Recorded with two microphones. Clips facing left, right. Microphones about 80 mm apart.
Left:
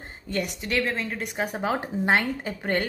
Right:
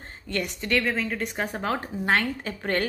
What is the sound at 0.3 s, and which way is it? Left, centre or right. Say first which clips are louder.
A woman's voice: right 1 dB; centre.